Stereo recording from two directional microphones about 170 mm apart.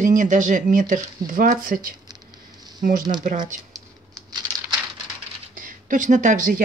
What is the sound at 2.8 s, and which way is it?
Speech, 50° right (ahead or behind).